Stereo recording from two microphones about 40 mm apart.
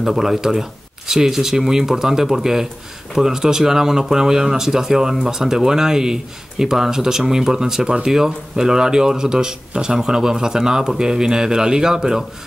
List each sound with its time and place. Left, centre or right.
0.0 s speech: centre